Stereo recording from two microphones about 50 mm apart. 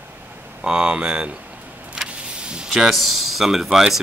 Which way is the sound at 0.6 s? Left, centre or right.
Centre.